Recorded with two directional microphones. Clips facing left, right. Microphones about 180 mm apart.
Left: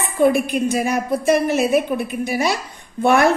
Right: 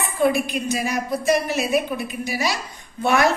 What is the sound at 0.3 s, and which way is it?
A woman's voice, 55° left (ahead or behind).